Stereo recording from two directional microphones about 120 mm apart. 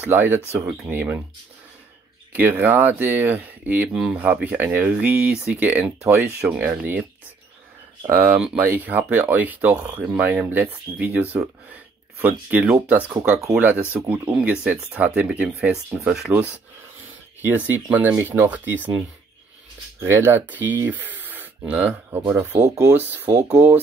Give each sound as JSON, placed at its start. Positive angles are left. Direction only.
{"t": 0.0, "sound": "speech", "side_deg": -15}
{"t": 2.3, "sound": "speech", "side_deg": -15}
{"t": 8.3, "sound": "speech", "side_deg": -15}
{"t": 20.0, "sound": "speech", "side_deg": -20}
{"t": 22.5, "sound": "speech", "side_deg": -30}
{"t": 22.8, "sound": "speech", "side_deg": -15}